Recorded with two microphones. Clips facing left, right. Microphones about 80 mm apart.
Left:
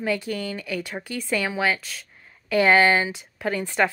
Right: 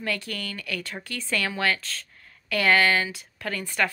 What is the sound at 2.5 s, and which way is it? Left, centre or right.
A woman's voice, left.